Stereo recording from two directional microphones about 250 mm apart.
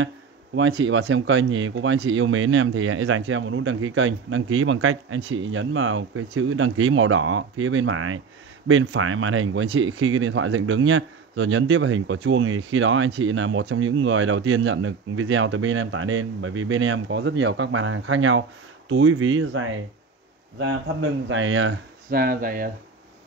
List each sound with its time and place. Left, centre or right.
0.6 s speech: right
22.1 s speech: right